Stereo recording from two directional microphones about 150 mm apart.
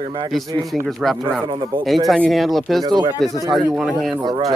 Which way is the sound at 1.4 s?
35° right (ahead or behind).